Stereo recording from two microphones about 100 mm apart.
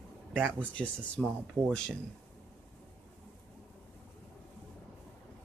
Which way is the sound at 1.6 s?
30° right (ahead or behind).